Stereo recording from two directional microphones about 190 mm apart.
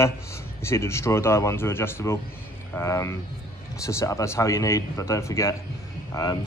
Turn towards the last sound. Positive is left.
turn(degrees=20)  # may be behind; listen again after turning